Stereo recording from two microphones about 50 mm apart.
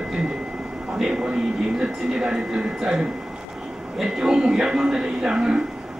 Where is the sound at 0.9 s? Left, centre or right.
Centre.